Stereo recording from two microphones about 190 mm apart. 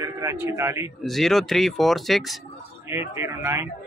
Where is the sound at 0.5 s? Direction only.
15° right (ahead or behind).